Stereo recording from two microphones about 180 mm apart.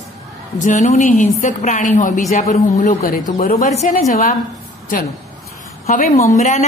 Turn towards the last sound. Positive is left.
turn(degrees=45)  # may be behind; listen again after turning